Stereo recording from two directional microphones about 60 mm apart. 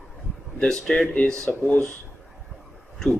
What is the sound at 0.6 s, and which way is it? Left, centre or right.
Speech, centre.